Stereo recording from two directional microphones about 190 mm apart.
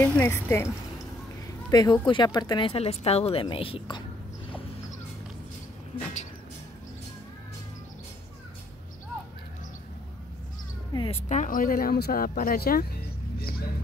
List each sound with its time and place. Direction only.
0.0 s speech: 10° left (ahead or behind)
1.7 s speech: 20° left (ahead or behind)
10.9 s cat: 25° left (ahead or behind)
11.2 s speech: 40° left (ahead or behind)